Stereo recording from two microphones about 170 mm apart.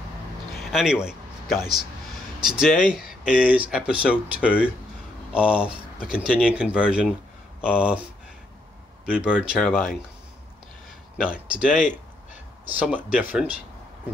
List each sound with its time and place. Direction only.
0.7 s a sound: centre (ahead or behind)
2.4 s speech: 5° right (ahead or behind)
9.0 s speech: 5° right (ahead or behind)
11.2 s speech: 5° right (ahead or behind)
12.7 s speech: 10° right (ahead or behind)